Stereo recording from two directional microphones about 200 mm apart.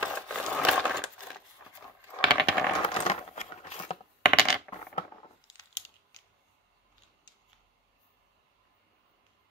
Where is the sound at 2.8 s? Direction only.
30° left (ahead or behind).